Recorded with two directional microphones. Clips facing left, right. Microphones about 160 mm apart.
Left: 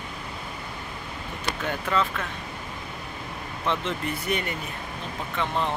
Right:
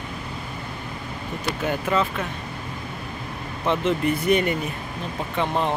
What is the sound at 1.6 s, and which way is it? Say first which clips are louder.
Speech: right 3 dB; 10° right (ahead or behind).